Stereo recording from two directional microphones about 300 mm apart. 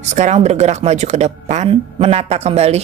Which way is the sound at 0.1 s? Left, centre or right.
Right.